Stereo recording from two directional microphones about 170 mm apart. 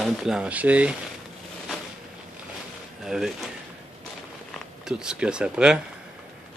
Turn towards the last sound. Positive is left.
turn(degrees=-5)  # may be behind; listen again after turning